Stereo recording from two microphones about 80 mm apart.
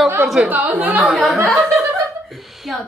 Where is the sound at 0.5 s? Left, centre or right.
Right.